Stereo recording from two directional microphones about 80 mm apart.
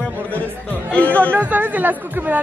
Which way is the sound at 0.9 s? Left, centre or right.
Centre.